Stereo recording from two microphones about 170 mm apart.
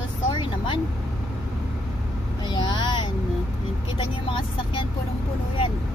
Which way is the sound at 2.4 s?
25° left (ahead or behind).